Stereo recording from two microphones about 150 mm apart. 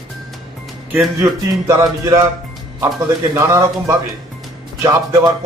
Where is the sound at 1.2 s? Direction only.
20° right (ahead or behind).